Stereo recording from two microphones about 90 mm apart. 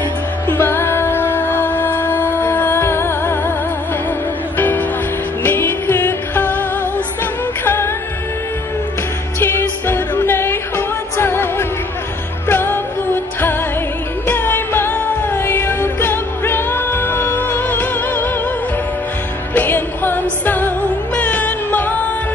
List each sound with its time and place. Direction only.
0.5 s music: 25° left (ahead or behind)
4.6 s music: 20° left (ahead or behind)
7.6 s music: 20° left (ahead or behind)
9.4 s music: 25° left (ahead or behind)
19.5 s music: 20° left (ahead or behind)